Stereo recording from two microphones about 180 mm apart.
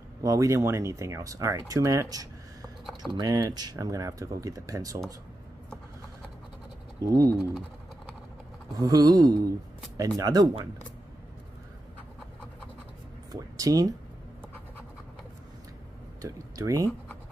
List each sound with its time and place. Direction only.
0.2 s speech: 15° right (ahead or behind)
7.0 s speech: 15° right (ahead or behind)
8.7 s speech: 20° right (ahead or behind)
13.3 s speech: 20° right (ahead or behind)
16.2 s speech: 20° right (ahead or behind)